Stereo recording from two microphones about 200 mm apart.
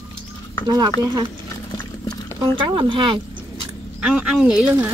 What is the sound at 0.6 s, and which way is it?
Speech, 20° right (ahead or behind).